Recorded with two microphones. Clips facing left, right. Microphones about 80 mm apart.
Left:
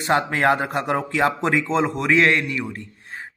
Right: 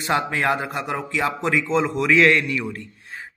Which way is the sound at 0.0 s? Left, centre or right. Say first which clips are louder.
Left 3 dB; left.